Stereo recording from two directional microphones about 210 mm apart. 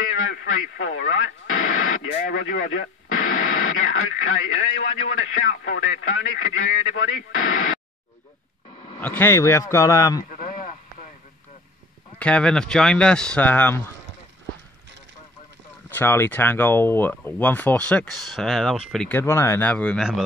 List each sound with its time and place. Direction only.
0.0 s speech: 70° left (ahead or behind)
9.0 s speech: 10° left (ahead or behind)
12.2 s speech: 5° left (ahead or behind)
15.9 s speech: 10° left (ahead or behind)